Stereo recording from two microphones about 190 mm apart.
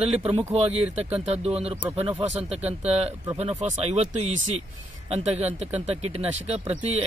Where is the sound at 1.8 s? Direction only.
10° right (ahead or behind).